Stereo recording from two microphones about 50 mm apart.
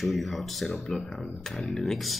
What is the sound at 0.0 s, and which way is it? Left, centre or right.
Speech, centre.